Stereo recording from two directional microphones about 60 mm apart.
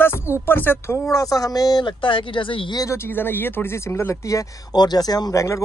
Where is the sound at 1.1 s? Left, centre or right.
Left.